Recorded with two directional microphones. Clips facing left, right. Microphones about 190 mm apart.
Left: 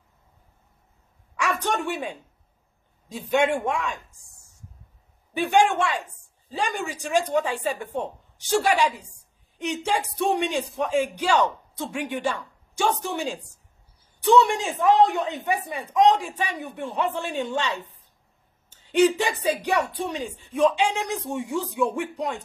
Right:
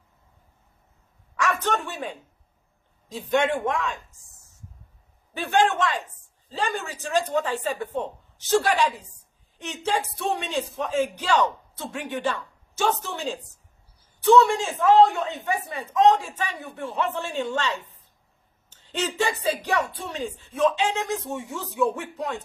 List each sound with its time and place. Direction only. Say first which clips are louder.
1.3 s a sound: right 1 dB; 15° left (ahead or behind)
3.1 s a man's voice: left 1 dB; 10° left (ahead or behind)
5.3 s a man's voice: left 2 dB; 15° left (ahead or behind)
18.7 s a man's voice: left 10 dB; 15° left (ahead or behind)